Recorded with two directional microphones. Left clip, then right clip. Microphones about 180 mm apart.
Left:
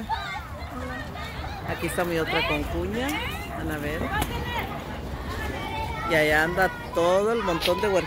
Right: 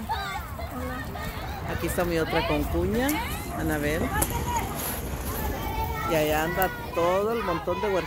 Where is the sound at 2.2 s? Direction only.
25° left (ahead or behind).